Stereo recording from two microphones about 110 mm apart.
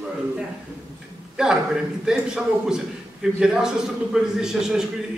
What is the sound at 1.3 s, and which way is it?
A man's voice, 5° right (ahead or behind).